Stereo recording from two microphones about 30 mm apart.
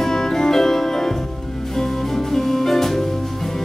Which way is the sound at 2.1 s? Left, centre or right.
Centre.